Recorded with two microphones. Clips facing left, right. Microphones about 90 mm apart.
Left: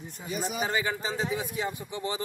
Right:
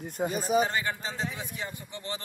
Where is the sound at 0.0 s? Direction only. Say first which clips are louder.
Right 6 dB; 50° right (ahead or behind).